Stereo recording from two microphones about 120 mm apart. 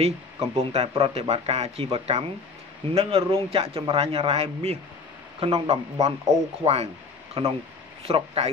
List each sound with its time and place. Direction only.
0.0 s speech: 60° right (ahead or behind)